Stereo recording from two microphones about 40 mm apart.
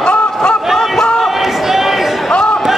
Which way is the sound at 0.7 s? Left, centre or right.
Centre.